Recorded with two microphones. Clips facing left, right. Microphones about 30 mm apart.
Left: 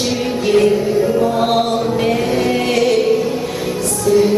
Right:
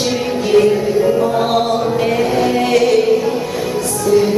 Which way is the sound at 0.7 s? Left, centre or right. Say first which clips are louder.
Right 1 dB; centre.